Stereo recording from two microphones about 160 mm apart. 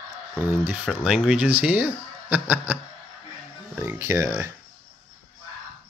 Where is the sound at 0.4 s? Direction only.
15° right (ahead or behind).